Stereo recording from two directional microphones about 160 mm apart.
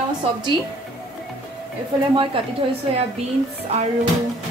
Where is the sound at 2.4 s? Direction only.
35° right (ahead or behind).